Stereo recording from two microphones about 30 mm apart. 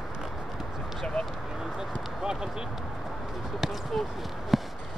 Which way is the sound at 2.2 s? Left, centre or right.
Right.